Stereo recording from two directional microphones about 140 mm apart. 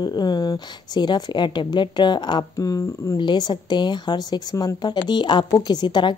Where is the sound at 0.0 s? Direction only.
30° left (ahead or behind).